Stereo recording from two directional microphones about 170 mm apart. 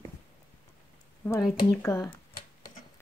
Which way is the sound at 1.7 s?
20° left (ahead or behind).